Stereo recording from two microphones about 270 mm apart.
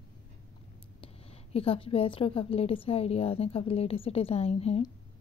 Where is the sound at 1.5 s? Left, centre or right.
Left.